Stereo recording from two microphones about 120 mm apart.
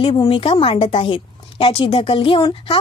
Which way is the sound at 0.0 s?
50° left (ahead or behind).